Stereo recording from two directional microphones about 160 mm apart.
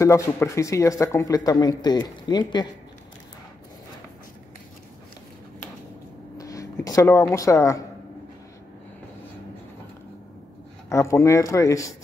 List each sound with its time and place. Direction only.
0.0 s speech: 20° left (ahead or behind)
6.3 s a sound: 20° left (ahead or behind)
10.9 s speech: 20° left (ahead or behind)